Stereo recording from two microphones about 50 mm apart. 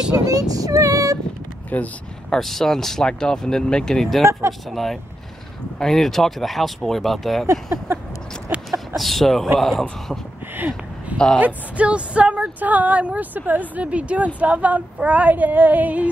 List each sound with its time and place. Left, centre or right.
0.1 s speech: right
0.7 s cat: right
1.7 s speech: left
2.3 s speech: centre
4.2 s speech: right
4.6 s speech: centre
7.7 s speech: right
8.6 s chicken: centre
9.6 s speech: centre
10.5 s a sound: right
11.3 s speech: right